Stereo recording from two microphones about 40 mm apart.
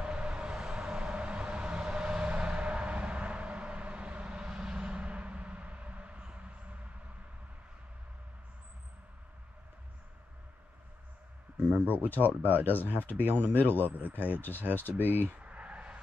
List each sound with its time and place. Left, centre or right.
0.0 s vehicle: right
4.8 s a sound: right
11.7 s speech: right
12.0 s speech: left
13.8 s speech: right
14.4 s speech: left
15.0 s speech: right
15.4 s a sound: right